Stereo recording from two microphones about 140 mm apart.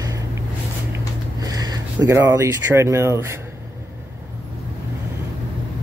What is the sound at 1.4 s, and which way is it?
Speech, 25° right (ahead or behind).